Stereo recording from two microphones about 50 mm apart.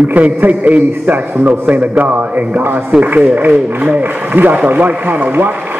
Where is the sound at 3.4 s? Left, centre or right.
Right.